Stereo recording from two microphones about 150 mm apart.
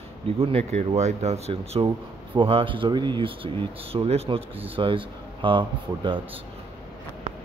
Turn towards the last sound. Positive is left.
turn(degrees=-35)  # may be behind; listen again after turning